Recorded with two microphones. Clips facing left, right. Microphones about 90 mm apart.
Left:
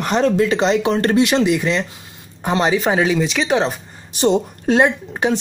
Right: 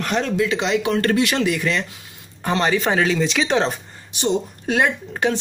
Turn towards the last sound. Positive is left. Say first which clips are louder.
# left 2 dB
turn(degrees=15)  # may be behind; listen again after turning